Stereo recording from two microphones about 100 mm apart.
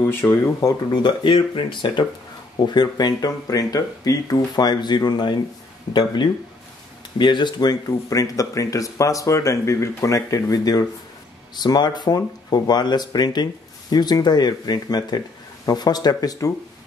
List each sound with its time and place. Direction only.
0.0 s speech: 25° left (ahead or behind)
1.0 s speech: 55° left (ahead or behind)
7.2 s speech: 50° left (ahead or behind)
8.1 s speech: 35° left (ahead or behind)